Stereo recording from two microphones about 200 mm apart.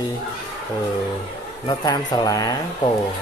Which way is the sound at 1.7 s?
20° left (ahead or behind).